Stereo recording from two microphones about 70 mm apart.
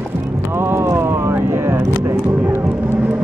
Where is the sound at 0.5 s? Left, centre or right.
Right.